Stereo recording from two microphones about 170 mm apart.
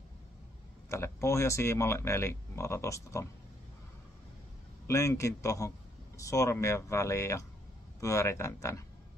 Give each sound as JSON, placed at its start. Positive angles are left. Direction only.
{"t": 0.8, "sound": "speech", "side_deg": 15}
{"t": 4.8, "sound": "speech", "side_deg": 15}